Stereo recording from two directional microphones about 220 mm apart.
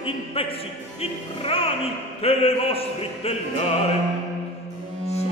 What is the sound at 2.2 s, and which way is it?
Opera, 25° left (ahead or behind).